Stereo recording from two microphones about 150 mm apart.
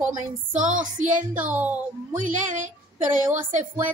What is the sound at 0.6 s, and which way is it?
Speech, 60° right (ahead or behind).